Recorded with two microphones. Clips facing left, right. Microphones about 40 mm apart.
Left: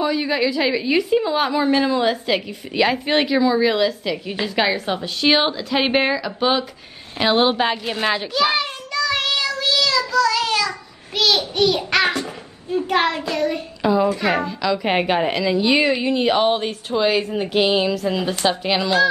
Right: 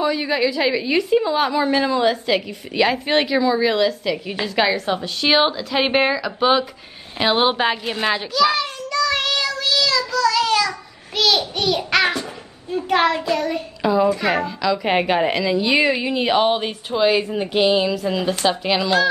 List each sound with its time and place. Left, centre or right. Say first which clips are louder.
0.0 s a woman's voice: even; centre
8.3 s a child's voice: right 3 dB; left
8.9 s child singing: right 1 dB; centre
11.1 s a woman's voice: left 1 dB; centre
13.3 s child singing: right 1 dB; centre
14.1 s a woman's voice: even; centre